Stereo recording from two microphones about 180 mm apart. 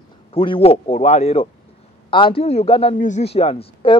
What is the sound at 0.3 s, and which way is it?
A man's voice, 30° left (ahead or behind).